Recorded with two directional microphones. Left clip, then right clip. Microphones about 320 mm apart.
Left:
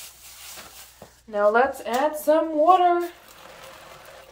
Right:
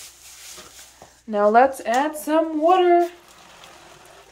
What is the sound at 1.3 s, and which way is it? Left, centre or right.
Speech, centre.